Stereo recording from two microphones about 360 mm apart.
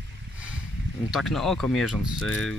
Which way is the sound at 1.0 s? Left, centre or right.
Centre.